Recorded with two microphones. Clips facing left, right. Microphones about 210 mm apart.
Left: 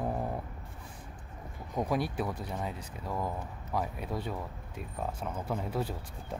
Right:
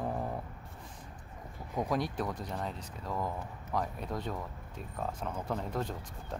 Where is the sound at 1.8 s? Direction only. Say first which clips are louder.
Left 1 dB; 10° left (ahead or behind).